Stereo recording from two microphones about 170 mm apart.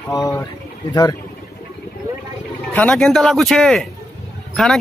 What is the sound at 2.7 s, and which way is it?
A man's voice, 10° left (ahead or behind).